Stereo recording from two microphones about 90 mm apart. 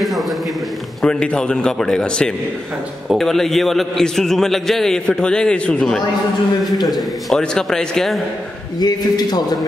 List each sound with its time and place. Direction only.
0.0 s a sound: centre (ahead or behind)
1.0 s a man's voice: 10° left (ahead or behind)
8.7 s a man's voice: 50° left (ahead or behind)